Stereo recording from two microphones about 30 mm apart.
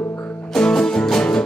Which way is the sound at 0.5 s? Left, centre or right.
Left.